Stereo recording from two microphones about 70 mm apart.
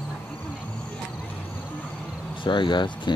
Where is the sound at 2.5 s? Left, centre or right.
Left.